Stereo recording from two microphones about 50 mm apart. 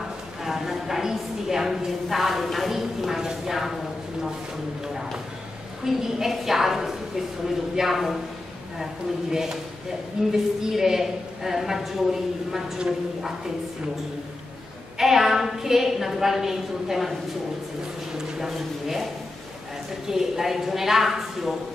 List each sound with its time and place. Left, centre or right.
0.4 s a woman's voice: centre
4.8 s a sound: centre
5.9 s a woman's voice: centre
9.3 s a woman's voice: centre
15.0 s a woman's voice: centre
18.1 s a sound: centre
20.1 s a woman's voice: centre